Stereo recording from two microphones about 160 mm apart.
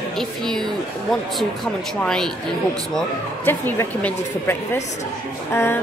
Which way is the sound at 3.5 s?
10° left (ahead or behind).